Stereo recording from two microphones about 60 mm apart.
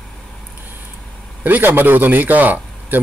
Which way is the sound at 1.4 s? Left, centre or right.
Right.